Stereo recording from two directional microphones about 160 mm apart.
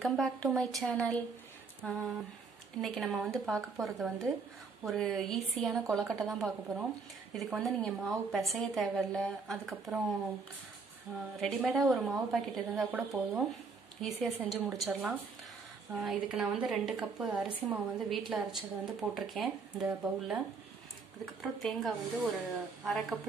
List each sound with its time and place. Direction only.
0.0 s a woman's voice: centre (ahead or behind)
1.8 s a sound: 5° left (ahead or behind)
2.8 s a woman's voice: centre (ahead or behind)
11.3 s a woman's voice: centre (ahead or behind)